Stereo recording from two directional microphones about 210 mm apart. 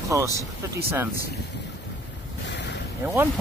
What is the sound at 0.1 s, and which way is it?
Speech, 15° right (ahead or behind).